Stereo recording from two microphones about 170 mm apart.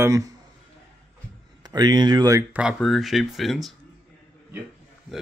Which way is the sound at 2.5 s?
Centre (ahead or behind).